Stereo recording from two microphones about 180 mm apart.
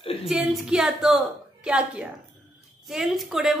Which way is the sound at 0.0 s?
30° left (ahead or behind).